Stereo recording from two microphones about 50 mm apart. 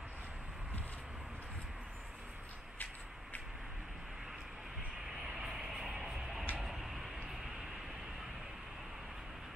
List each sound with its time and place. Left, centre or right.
5.5 s music: centre
6.6 s vehicle: centre